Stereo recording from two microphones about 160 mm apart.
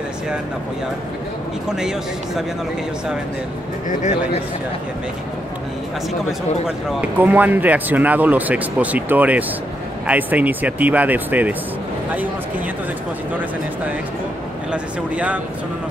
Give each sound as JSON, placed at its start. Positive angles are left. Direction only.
{"t": 1.7, "sound": "a man's voice", "side_deg": -5}
{"t": 6.9, "sound": "speech", "side_deg": -10}
{"t": 14.7, "sound": "speech", "side_deg": -10}